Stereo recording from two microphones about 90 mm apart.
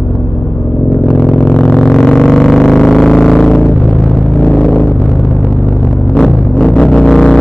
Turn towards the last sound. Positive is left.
turn(degrees=5)  # may be behind; listen again after turning